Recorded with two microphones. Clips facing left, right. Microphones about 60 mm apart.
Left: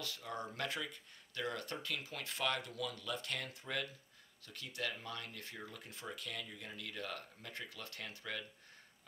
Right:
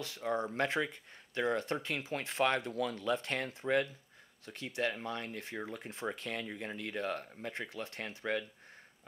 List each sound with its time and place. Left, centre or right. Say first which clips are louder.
0.0 s speech: right 9 dB; right